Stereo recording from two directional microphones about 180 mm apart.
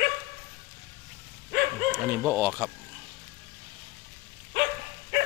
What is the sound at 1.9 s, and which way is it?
Speech, 10° right (ahead or behind).